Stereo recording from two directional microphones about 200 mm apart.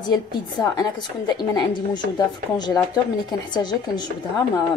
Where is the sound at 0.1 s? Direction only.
20° left (ahead or behind).